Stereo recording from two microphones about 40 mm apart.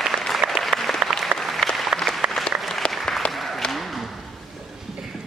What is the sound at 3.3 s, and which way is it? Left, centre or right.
Applause, centre.